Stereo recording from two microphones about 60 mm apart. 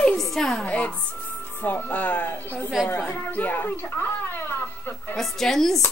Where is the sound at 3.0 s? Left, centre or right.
Left.